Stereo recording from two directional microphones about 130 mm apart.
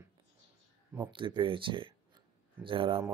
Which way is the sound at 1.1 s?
40° right (ahead or behind).